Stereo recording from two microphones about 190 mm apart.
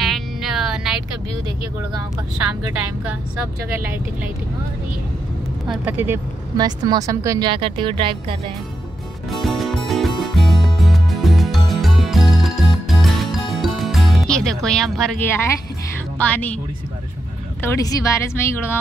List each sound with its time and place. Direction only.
0.0 s music: centre (ahead or behind)
5.7 s speech: 10° right (ahead or behind); by 8.4 s 25° right (ahead or behind)
9.3 s music: centre (ahead or behind)
16.2 s speech: 10° left (ahead or behind)
17.6 s speech: 15° left (ahead or behind)